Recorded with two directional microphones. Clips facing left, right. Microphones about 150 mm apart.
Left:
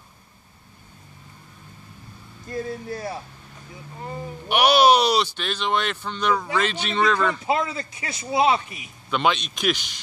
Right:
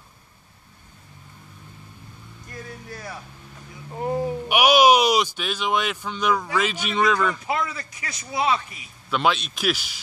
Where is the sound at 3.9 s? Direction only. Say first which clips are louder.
Right 9 dB; 70° right (ahead or behind).